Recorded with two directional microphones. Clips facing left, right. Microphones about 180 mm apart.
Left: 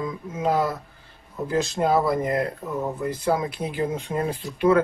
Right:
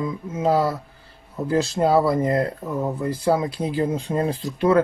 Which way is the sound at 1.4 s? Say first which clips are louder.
Right 3 dB; 30° right (ahead or behind).